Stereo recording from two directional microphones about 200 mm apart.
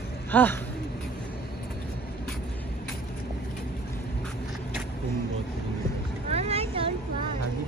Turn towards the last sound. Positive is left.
turn(degrees=-30)  # may be behind; listen again after turning